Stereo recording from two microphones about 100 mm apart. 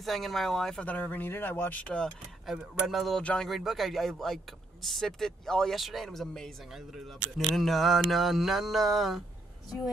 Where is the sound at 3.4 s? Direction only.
Centre (ahead or behind).